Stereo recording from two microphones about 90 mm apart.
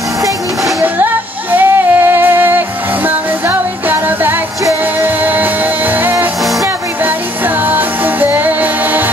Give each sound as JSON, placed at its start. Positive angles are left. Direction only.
{"t": 1.5, "sound": "female singing", "side_deg": -20}
{"t": 3.4, "sound": "music", "side_deg": -20}
{"t": 7.4, "sound": "music", "side_deg": -20}